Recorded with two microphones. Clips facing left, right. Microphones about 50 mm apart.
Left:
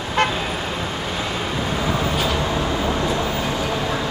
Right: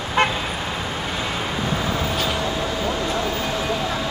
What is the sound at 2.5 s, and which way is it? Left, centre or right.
Train, left.